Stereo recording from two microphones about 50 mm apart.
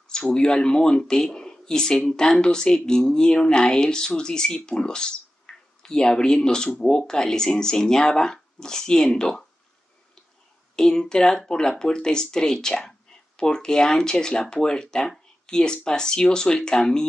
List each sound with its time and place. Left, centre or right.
0.1 s speech: centre
10.8 s speech: centre